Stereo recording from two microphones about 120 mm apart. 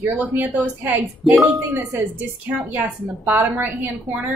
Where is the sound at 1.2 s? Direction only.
Centre (ahead or behind).